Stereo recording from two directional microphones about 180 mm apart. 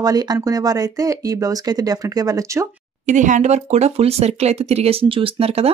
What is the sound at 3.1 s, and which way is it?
Speech, 45° right (ahead or behind).